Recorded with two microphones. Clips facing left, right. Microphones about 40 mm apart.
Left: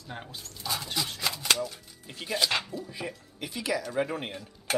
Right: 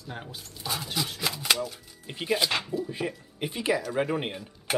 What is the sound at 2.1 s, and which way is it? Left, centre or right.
Speech, right.